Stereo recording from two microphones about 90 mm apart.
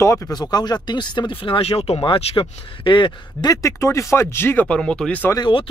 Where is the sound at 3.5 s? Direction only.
35° left (ahead or behind).